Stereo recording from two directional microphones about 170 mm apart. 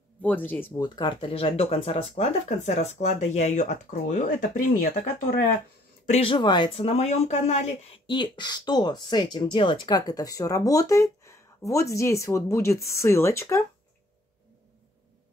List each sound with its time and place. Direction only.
0.2 s speech: 10° left (ahead or behind)
0.8 s speech: 25° left (ahead or behind); by 4.5 s 50° left (ahead or behind)
6.0 s speech: 35° left (ahead or behind)
8.1 s speech: 25° left (ahead or behind)